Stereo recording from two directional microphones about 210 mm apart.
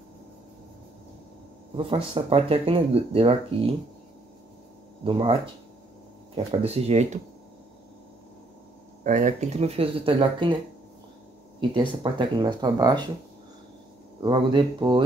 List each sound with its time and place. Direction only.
1.8 s speech: 25° right (ahead or behind)
5.0 s speech: 25° right (ahead or behind)
9.0 s speech: 35° right (ahead or behind)
11.7 s speech: 20° right (ahead or behind)
14.2 s speech: 20° right (ahead or behind)